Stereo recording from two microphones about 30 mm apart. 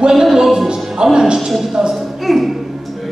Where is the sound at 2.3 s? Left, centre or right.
Centre.